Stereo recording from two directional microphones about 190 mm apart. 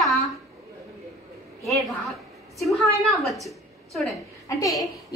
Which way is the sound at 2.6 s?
Centre (ahead or behind).